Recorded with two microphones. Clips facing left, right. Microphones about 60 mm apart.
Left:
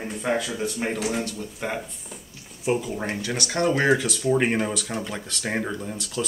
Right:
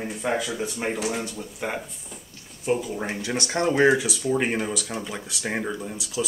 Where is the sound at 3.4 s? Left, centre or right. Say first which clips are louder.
Left 1 dB; centre.